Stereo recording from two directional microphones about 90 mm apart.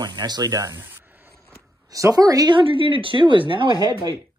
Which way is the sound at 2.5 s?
75° right (ahead or behind).